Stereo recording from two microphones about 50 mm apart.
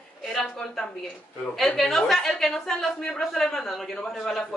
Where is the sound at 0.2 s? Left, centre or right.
Centre.